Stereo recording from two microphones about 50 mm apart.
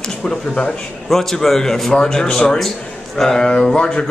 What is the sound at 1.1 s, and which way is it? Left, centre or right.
A man's voice, centre.